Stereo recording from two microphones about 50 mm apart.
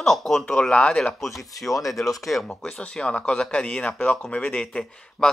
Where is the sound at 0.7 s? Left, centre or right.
Centre.